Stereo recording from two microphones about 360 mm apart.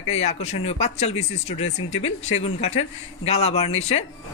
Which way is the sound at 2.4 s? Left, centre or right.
Centre.